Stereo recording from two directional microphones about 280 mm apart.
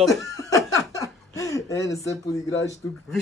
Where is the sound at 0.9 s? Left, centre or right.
Centre.